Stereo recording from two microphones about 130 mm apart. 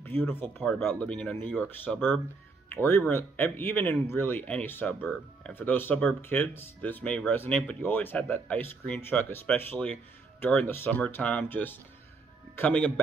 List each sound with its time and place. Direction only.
0.0 s speech: 15° left (ahead or behind)